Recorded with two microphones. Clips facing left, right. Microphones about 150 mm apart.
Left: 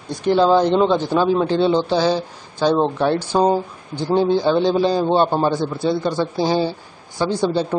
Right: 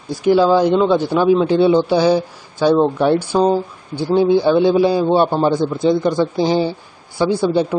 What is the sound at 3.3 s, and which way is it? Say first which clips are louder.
Speech: left 1 dB; 15° left (ahead or behind).